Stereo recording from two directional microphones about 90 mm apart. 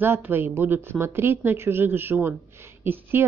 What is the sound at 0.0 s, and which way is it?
A woman's voice, 25° right (ahead or behind).